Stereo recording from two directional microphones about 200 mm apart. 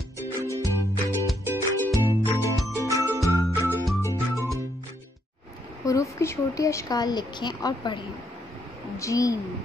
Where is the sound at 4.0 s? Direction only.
15° left (ahead or behind).